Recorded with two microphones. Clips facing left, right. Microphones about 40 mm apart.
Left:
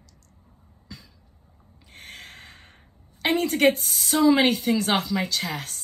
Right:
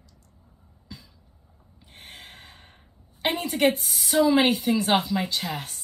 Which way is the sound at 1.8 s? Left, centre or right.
Left.